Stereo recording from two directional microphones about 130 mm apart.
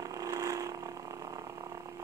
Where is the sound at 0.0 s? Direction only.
25° right (ahead or behind).